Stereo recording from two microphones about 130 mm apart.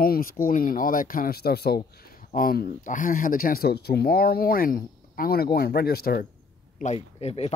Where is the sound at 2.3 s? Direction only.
90° left.